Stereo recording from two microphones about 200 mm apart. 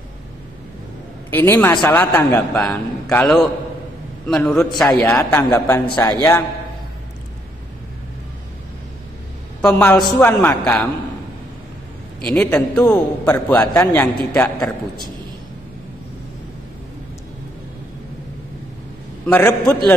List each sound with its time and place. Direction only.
1.3 s a man's voice: 10° left (ahead or behind)
9.6 s a man's voice: 5° left (ahead or behind)
12.3 s a man's voice: 5° left (ahead or behind)
19.2 s a man's voice: 10° left (ahead or behind)